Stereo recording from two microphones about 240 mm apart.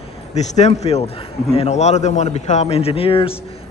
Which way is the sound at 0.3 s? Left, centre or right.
Left.